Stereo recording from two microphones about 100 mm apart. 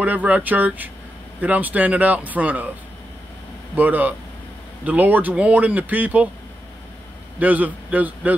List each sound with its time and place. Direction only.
0.0 s speech: 15° right (ahead or behind)
3.7 s speech: 15° right (ahead or behind)
7.3 s speech: 15° right (ahead or behind)